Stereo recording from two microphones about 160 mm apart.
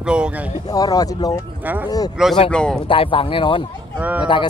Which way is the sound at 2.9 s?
35° left (ahead or behind).